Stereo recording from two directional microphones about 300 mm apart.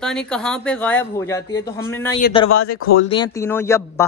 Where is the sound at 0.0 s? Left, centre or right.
Centre.